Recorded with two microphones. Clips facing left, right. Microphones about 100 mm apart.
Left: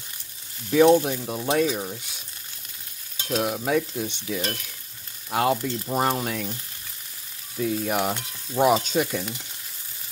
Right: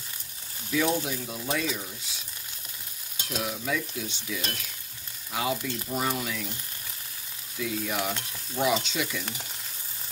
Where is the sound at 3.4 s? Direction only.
50° left (ahead or behind).